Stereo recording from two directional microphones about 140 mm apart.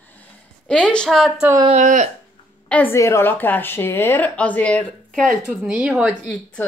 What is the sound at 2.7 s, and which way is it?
A woman's voice, 10° left (ahead or behind).